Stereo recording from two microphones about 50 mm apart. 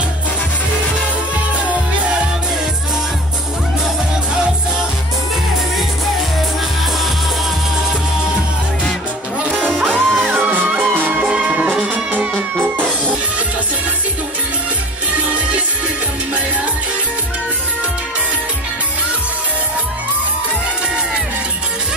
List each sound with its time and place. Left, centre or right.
9.6 s music: right
9.9 s music: centre
10.3 s music: right